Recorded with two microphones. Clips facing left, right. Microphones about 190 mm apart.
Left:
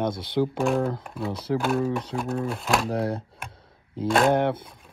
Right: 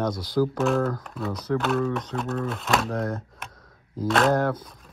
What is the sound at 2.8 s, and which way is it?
Speech, 30° left (ahead or behind).